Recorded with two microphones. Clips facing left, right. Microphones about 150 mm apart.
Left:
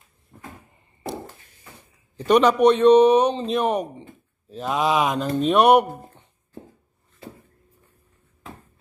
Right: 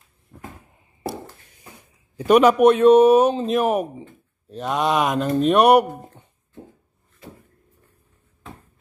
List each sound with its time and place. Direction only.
0.3 s cupboard open or close: 20° left (ahead or behind)
1.0 s a sound: 15° right (ahead or behind)
2.1 s a man's voice: 10° right (ahead or behind)